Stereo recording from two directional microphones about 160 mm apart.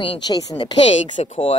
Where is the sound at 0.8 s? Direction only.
45° left (ahead or behind).